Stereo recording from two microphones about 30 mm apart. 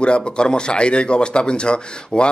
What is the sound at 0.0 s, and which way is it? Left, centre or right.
Speech, left.